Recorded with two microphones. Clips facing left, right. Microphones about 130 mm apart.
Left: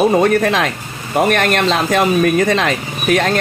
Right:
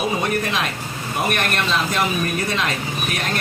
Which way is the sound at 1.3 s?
80° left.